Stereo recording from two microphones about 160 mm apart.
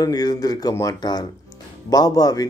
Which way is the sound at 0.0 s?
25° left (ahead or behind).